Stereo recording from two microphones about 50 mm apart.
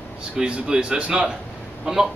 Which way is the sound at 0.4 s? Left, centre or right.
Right.